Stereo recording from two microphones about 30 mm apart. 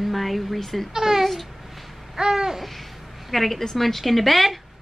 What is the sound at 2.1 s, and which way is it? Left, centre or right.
Babbling, centre.